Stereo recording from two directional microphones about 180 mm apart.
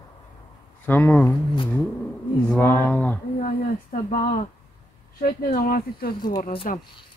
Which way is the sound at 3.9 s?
50° left (ahead or behind).